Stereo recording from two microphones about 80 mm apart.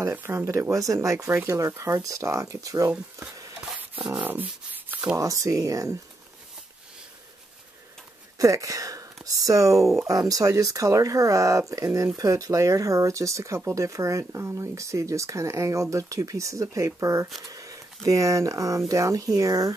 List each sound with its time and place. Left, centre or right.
0.1 s speech: right
3.2 s stir: right
4.2 s speech: right
5.1 s speech: right
8.4 s speech: right